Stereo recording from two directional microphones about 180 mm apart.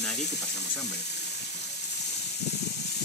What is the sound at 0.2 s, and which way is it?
Speech, 70° left (ahead or behind).